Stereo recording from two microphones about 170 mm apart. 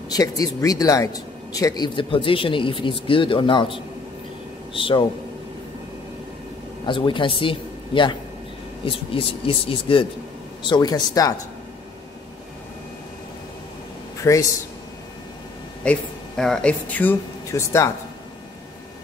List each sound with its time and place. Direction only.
0.1 s speech: 20° left (ahead or behind)
6.9 s speech: 30° left (ahead or behind)
14.2 s speech: 20° left (ahead or behind)
15.8 s speech: 5° left (ahead or behind)